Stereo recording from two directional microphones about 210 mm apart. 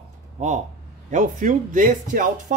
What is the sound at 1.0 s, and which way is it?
Speech, 35° right (ahead or behind).